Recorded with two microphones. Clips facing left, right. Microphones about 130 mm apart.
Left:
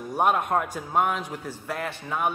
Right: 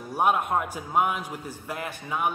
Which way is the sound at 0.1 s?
10° right (ahead or behind).